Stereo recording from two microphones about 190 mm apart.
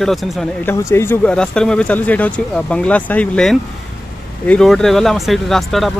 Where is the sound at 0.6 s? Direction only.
15° left (ahead or behind).